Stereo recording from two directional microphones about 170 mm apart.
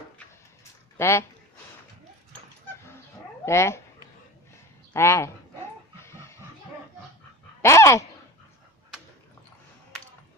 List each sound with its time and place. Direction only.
0.9 s speech: 15° left (ahead or behind)
3.4 s speech: 15° left (ahead or behind)
4.9 s speech: 15° left (ahead or behind)
5.9 s a sound: 15° left (ahead or behind)
7.6 s dog: 15° left (ahead or behind)